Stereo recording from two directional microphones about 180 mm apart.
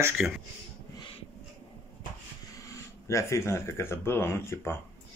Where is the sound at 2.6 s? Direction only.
15° left (ahead or behind).